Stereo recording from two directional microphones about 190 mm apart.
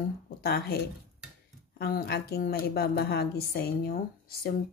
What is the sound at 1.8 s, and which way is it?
A woman's voice, 55° left (ahead or behind).